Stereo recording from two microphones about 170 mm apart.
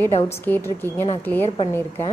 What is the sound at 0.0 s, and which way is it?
A woman's voice, 10° left (ahead or behind).